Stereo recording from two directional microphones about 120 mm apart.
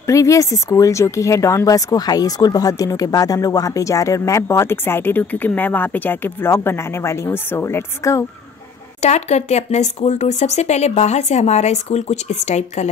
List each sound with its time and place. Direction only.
0.0 s speech: 25° left (ahead or behind)
9.0 s speech: 70° left (ahead or behind)